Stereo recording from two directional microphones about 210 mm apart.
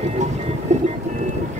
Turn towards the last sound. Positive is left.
turn(degrees=-35)  # may be behind; listen again after turning